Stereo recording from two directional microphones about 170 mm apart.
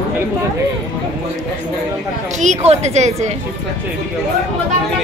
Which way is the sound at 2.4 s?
40° right (ahead or behind).